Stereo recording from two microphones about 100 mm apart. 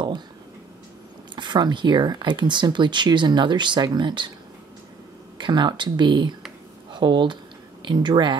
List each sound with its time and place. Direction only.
1.3 s speech: 50° right (ahead or behind)
5.4 s speech: 50° right (ahead or behind)